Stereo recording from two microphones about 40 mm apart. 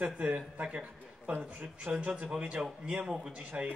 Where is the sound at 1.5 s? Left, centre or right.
Right.